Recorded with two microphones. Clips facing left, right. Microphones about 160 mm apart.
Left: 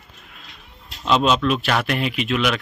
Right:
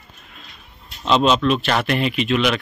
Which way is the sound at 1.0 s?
5° left (ahead or behind).